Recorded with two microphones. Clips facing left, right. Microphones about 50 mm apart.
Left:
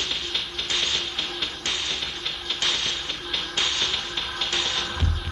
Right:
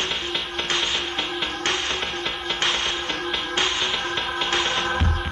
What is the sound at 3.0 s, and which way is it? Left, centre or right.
Music, right.